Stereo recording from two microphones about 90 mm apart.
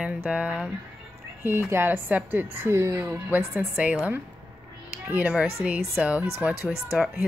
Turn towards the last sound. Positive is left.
turn(degrees=0)  # may be behind; listen again after turning